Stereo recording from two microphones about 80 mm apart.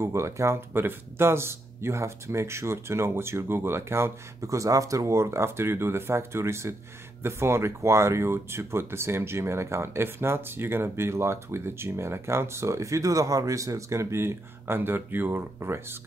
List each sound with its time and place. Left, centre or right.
0.0 s speech: right